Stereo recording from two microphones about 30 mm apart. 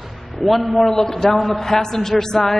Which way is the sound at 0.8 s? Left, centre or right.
Centre.